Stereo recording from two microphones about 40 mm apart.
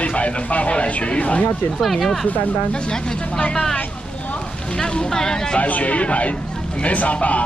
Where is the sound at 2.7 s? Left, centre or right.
Centre.